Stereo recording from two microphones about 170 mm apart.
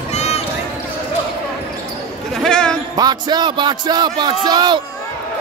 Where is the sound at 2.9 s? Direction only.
25° right (ahead or behind).